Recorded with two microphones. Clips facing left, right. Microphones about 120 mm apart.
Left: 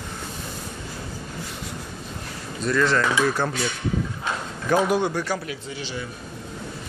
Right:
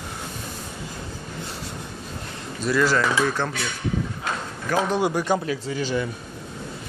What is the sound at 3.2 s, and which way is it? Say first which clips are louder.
Speech: left 1 dB; 10° left (ahead or behind).